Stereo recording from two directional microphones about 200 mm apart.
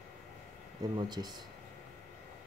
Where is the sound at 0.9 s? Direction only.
20° right (ahead or behind).